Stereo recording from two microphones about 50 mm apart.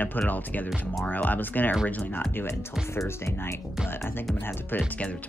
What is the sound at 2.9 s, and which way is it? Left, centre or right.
Speech, left.